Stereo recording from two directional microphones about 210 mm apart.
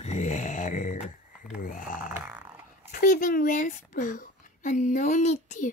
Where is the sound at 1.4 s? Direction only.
40° left (ahead or behind).